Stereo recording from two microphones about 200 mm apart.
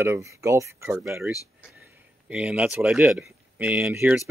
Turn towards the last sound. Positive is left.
turn(degrees=-10)  # may be behind; listen again after turning